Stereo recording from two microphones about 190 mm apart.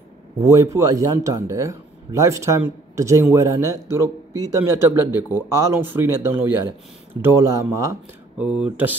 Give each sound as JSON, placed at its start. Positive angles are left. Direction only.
{"t": 0.4, "sound": "speech", "side_deg": -15}